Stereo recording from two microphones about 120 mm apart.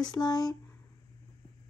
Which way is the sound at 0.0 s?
35° left (ahead or behind).